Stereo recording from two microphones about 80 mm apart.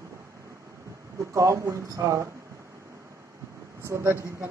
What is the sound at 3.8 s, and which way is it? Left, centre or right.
Speech, right.